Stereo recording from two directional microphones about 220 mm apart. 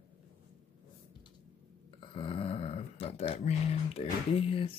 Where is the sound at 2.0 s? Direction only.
20° left (ahead or behind).